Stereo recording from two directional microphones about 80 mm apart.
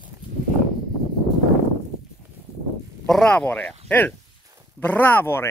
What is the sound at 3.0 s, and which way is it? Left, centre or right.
Speech, centre.